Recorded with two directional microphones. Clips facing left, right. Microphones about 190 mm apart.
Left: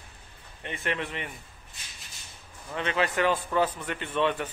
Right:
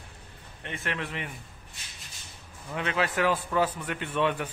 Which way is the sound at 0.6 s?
Centre (ahead or behind).